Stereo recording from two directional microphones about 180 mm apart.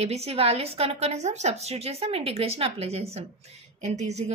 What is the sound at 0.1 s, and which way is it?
A woman's voice, 35° right (ahead or behind).